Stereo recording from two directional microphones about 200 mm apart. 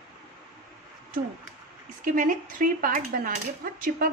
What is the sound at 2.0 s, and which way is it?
Dishes, 40° right (ahead or behind).